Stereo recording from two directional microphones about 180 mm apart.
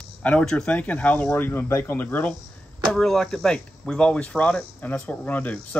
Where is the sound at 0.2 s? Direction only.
5° left (ahead or behind).